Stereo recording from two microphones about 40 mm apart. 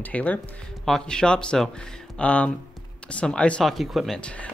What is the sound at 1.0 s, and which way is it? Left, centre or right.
Speech, left.